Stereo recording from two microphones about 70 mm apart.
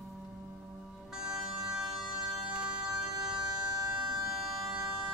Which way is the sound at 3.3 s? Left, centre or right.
Right.